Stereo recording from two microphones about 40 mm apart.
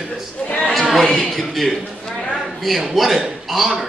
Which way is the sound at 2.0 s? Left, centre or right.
Centre.